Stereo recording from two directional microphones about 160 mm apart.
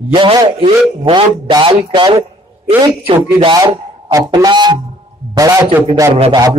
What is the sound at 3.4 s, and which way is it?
A man's voice, 25° right (ahead or behind).